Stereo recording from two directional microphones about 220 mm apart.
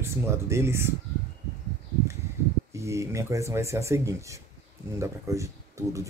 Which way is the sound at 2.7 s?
15° right (ahead or behind).